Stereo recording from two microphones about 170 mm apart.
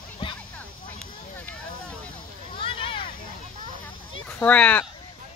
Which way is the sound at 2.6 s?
30° left (ahead or behind).